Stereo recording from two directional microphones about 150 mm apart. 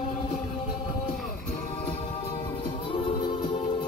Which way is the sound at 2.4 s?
30° left (ahead or behind).